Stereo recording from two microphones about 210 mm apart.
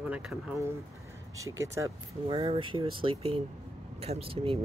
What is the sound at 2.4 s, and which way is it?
Speech, 25° right (ahead or behind).